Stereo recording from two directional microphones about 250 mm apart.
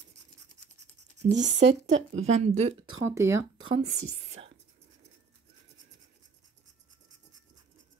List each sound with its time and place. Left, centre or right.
1.3 s a woman's voice: right
2.4 s speech: right
3.0 s speech: centre
3.8 s speech: right